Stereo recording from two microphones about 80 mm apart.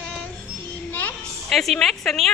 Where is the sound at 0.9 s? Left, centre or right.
Left.